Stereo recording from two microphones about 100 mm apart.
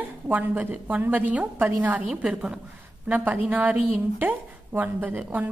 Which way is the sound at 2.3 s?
5° right (ahead or behind).